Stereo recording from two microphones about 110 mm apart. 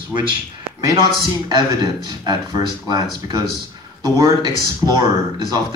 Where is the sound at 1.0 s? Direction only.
40° right (ahead or behind).